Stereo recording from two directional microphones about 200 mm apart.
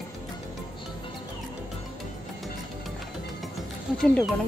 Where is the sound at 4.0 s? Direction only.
Centre (ahead or behind).